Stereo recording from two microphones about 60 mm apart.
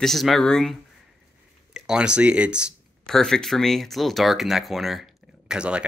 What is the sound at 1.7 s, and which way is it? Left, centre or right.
Speech, centre.